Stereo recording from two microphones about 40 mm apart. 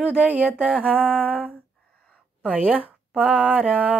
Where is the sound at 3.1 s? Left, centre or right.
Right.